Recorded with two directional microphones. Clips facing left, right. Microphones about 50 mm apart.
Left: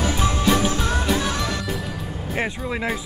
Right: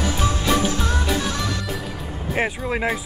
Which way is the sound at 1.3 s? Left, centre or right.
Left.